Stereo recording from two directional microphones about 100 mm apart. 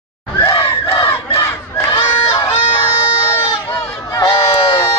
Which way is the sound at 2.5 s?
55° left (ahead or behind).